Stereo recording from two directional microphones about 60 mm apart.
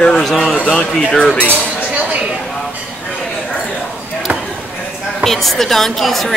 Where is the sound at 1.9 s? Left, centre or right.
Right.